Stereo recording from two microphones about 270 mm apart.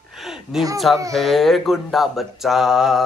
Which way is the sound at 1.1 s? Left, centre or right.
Centre.